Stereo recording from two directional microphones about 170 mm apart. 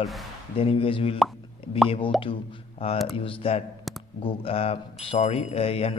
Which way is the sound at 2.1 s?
Centre (ahead or behind).